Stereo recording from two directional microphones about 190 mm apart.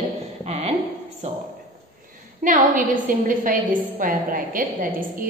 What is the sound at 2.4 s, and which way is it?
A woman's voice, 45° right (ahead or behind).